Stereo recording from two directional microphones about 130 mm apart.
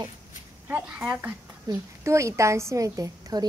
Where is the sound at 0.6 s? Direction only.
10° right (ahead or behind); by 3.5 s 30° right (ahead or behind).